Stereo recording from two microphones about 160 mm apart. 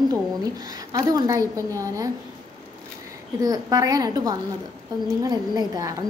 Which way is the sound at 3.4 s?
20° right (ahead or behind).